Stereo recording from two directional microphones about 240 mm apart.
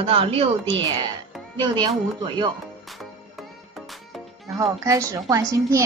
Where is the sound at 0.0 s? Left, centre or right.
Right.